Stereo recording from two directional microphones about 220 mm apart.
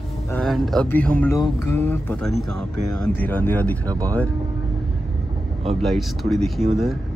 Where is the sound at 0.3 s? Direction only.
Centre (ahead or behind).